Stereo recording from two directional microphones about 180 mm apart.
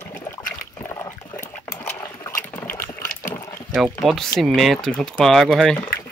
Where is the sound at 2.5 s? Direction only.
10° left (ahead or behind).